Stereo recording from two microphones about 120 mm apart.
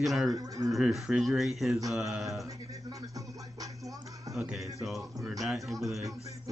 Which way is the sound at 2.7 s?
30° right (ahead or behind).